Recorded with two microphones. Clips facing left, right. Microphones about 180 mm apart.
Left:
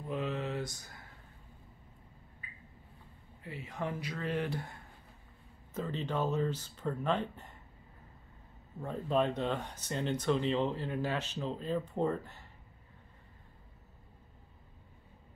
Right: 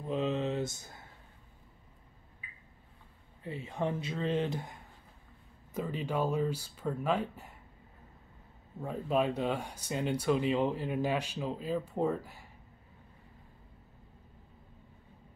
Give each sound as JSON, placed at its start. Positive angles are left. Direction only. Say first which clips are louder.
{"t": 0.1, "sound": "a sound", "louder": "right 4 dB", "side_deg": -20}
{"t": 3.4, "sound": "speech", "louder": "right 4 dB", "side_deg": -25}
{"t": 8.8, "sound": "speech", "louder": "right 1 dB", "side_deg": -10}